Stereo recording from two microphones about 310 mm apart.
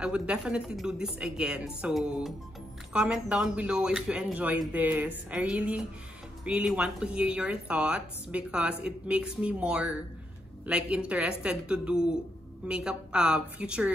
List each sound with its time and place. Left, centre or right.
0.0 s speech: centre